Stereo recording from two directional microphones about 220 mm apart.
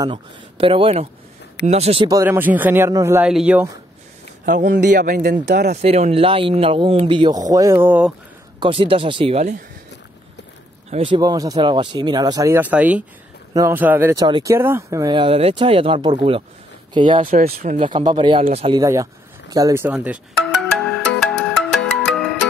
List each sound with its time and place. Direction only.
0.0 s speech: 20° right (ahead or behind); by 3.7 s 5° right (ahead or behind)
4.5 s speech: 50° right (ahead or behind)
4.9 s speech: 40° right (ahead or behind)
5.8 s speech: 30° right (ahead or behind); by 8.1 s 10° right (ahead or behind)
8.5 s speech: 25° right (ahead or behind)
10.9 s speech: 25° right (ahead or behind)
17.3 s speech: 40° right (ahead or behind)
17.7 s speech: 20° right (ahead or behind)
19.5 s music: 15° right (ahead or behind); by 21.5 s centre (ahead or behind)